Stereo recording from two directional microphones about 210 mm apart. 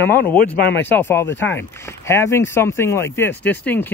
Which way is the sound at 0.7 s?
10° left (ahead or behind).